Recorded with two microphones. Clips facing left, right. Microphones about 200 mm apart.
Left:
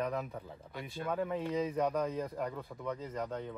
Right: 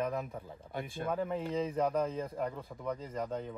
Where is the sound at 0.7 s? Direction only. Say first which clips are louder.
Right 3 dB; 50° right (ahead or behind).